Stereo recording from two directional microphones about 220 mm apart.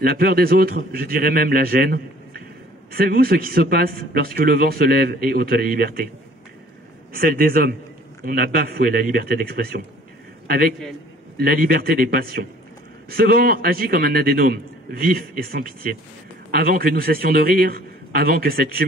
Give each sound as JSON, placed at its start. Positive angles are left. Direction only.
{"t": 0.0, "sound": "a man's voice", "side_deg": -40}
{"t": 7.2, "sound": "a man's voice", "side_deg": -45}